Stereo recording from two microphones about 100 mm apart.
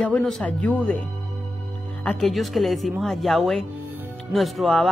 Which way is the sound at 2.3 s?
Centre (ahead or behind).